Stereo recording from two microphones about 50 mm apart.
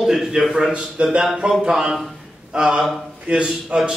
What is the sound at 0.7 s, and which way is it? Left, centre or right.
A man's voice, centre.